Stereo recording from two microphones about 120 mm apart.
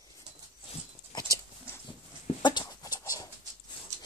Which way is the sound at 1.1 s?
35° left (ahead or behind).